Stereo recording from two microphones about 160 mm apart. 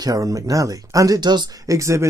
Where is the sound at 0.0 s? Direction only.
20° right (ahead or behind).